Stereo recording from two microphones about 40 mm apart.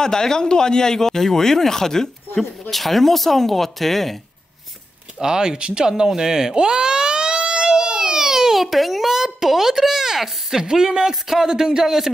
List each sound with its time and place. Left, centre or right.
0.0 s speech: centre
5.2 s speech: centre